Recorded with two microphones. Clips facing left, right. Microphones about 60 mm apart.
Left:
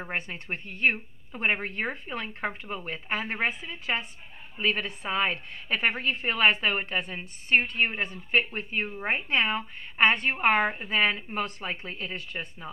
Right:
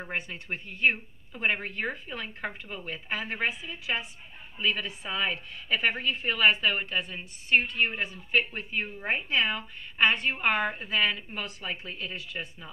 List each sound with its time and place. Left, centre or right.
0.1 s a woman's voice: left
10.3 s a woman's voice: left